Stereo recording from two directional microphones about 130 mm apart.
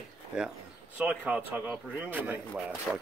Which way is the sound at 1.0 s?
10° right (ahead or behind).